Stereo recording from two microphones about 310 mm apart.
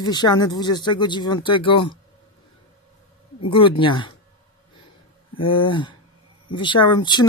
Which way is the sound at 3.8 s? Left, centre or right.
Centre.